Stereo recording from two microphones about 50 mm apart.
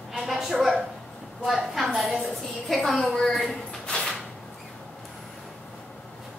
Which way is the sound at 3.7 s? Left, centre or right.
Centre.